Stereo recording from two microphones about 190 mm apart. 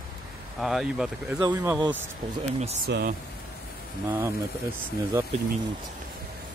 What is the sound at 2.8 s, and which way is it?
Speech, 55° right (ahead or behind).